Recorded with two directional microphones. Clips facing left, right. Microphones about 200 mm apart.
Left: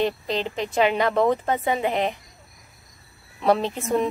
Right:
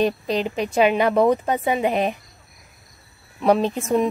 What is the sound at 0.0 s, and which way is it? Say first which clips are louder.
Speech: right 3 dB; 15° right (ahead or behind).